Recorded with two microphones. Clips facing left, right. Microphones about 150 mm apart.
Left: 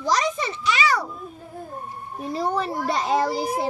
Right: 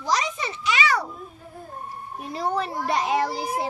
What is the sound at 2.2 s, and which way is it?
A child's voice, 35° left (ahead or behind).